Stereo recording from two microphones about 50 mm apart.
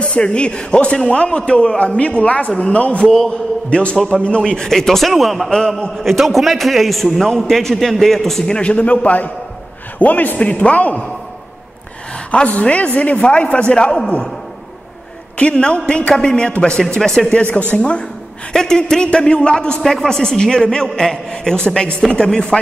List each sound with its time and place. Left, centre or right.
0.0 s a man's voice: left
4.5 s a man's voice: centre
8.5 s a man's voice: left
12.3 s a man's voice: left
15.3 s a man's voice: left
17.3 s a man's voice: left
18.5 s a man's voice: centre
19.8 s a man's voice: centre